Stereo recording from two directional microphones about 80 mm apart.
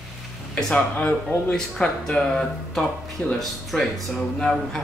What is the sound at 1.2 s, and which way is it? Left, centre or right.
Speech, centre.